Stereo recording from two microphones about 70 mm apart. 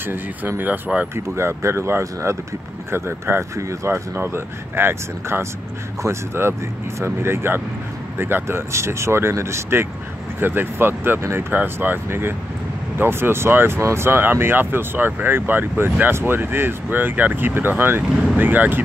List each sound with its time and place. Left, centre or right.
0.0 s speech: right
1.1 s speech: right
18.1 s speech: centre
18.4 s speech: right